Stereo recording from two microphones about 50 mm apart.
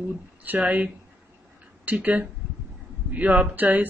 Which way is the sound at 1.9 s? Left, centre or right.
Right.